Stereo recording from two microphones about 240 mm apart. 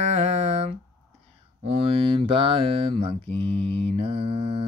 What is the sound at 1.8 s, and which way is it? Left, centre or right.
Mantra, right.